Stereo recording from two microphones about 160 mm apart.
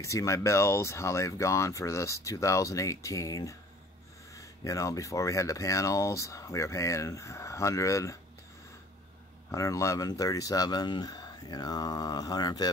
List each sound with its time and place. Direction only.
0.0 s speech: 20° left (ahead or behind)
9.5 s speech: 20° left (ahead or behind)